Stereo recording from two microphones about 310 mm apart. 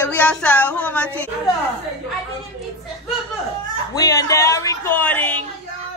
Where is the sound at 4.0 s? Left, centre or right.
Centre.